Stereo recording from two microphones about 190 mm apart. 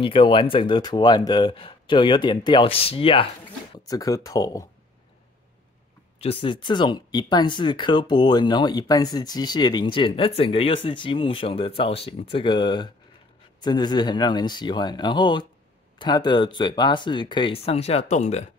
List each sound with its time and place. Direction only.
0.0 s speech: 25° left (ahead or behind)
6.1 s speech: 30° left (ahead or behind)